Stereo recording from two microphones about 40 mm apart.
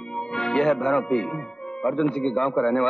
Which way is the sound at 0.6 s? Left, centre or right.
Centre.